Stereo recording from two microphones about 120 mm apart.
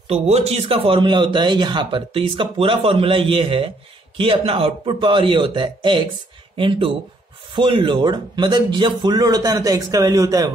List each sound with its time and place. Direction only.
0.1 s a man's voice: 60° right (ahead or behind); by 10.5 s 30° right (ahead or behind)